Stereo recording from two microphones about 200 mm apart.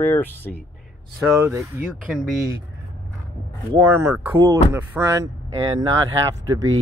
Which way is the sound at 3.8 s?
10° right (ahead or behind).